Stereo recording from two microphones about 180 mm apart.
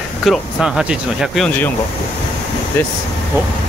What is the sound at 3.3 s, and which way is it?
Speech, 15° right (ahead or behind).